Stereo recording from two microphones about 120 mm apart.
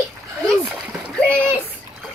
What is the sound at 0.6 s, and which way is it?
Speech, 20° right (ahead or behind).